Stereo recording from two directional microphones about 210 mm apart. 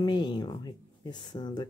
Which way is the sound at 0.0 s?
20° left (ahead or behind).